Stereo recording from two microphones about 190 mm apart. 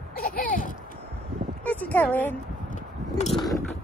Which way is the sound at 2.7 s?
35° left (ahead or behind).